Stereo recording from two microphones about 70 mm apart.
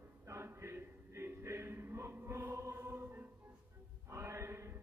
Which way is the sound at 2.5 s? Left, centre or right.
Right.